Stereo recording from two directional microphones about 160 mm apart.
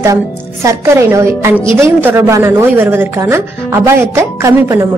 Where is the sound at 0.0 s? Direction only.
20° right (ahead or behind).